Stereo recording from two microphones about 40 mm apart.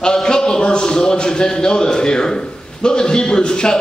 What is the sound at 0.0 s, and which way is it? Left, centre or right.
A man's voice, centre.